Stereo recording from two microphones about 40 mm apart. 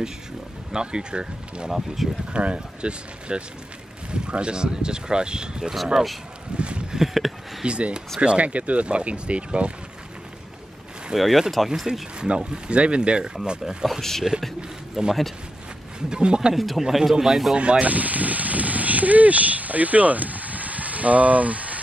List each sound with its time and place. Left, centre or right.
0.7 s speech: right
1.7 s speech: centre
2.3 s speech: right
6.5 s a sound: right
7.0 s speech: centre
7.6 s speech: right
11.1 s speech: centre
12.2 s speech: right
14.3 s speech: centre
16.5 s speech: centre
17.6 s a sound: right